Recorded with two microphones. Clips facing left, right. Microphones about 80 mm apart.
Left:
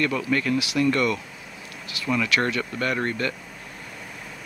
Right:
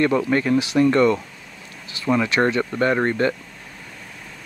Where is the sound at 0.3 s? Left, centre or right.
Right.